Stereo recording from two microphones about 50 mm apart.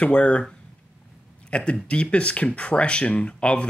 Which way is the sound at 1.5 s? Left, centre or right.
Left.